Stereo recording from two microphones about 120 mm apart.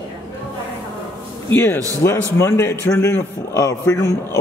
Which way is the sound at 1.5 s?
15° left (ahead or behind).